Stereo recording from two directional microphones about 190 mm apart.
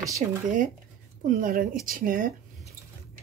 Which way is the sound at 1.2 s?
45° right (ahead or behind).